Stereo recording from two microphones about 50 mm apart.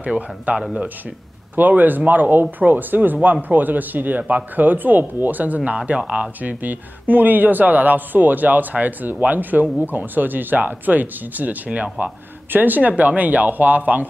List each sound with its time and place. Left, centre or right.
0.0 s speech: right
5.8 s speech: centre